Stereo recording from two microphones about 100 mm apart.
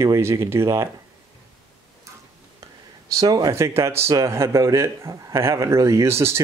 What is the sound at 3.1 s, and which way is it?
Speech, 35° right (ahead or behind).